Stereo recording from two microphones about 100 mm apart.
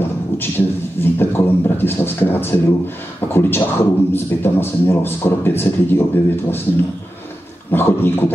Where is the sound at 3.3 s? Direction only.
20° left (ahead or behind).